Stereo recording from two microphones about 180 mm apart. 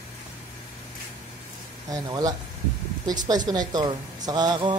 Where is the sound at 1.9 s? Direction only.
20° right (ahead or behind).